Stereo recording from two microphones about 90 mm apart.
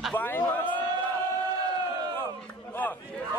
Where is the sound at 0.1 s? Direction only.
20° left (ahead or behind).